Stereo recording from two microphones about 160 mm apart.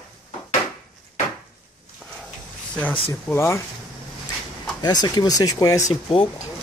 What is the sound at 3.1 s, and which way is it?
Speech, 15° left (ahead or behind).